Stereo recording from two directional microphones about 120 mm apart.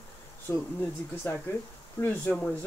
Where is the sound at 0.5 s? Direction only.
30° left (ahead or behind).